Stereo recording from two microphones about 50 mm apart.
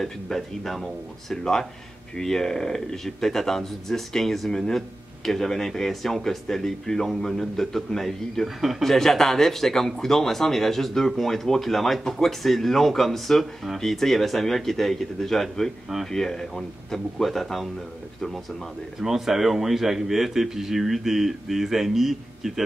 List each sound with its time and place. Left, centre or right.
0.0 s speech: centre
18.9 s speech: centre